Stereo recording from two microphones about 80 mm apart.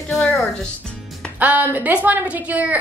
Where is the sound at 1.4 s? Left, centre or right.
Right.